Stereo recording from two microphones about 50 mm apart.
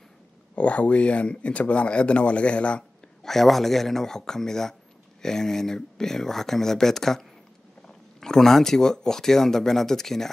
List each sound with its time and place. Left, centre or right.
0.6 s speech: left
3.3 s speech: centre